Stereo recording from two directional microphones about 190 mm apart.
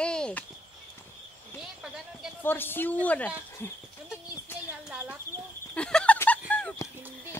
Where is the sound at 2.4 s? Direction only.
10° left (ahead or behind).